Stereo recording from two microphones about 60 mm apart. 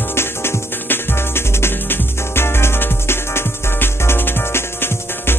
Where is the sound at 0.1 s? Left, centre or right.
Left.